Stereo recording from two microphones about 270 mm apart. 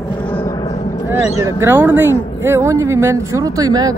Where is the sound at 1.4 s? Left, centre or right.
Centre.